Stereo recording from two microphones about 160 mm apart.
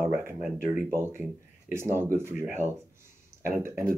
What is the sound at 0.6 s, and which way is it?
Speech, 15° right (ahead or behind).